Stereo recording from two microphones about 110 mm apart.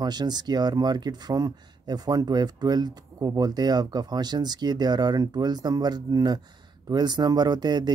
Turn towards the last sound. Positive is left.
turn(degrees=-40)  # may be behind; listen again after turning